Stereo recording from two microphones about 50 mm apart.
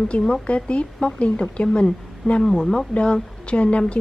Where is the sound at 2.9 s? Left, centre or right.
Left.